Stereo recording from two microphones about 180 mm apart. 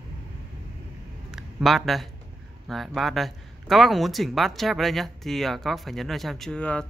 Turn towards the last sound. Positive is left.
turn(degrees=5)  # may be behind; listen again after turning